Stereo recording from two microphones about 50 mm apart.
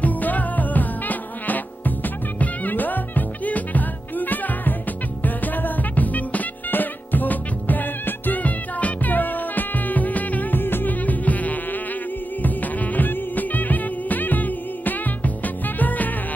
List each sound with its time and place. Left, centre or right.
0.0 s music: left